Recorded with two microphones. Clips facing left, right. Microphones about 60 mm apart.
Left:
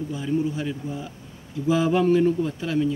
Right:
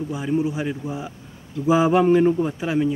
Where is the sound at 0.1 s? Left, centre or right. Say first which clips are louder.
Right 2 dB; centre.